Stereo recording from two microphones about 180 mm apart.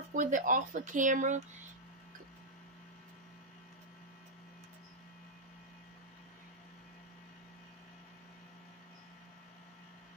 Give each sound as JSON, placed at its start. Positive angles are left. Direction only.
{"t": 0.1, "sound": "speech", "side_deg": -45}